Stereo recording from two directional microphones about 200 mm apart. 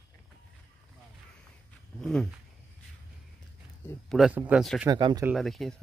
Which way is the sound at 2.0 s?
5° left (ahead or behind).